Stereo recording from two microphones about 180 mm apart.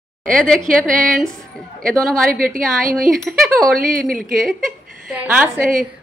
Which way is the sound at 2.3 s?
50° right (ahead or behind).